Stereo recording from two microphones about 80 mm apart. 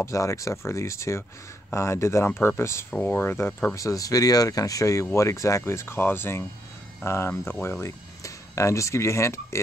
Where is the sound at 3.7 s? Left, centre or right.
Left.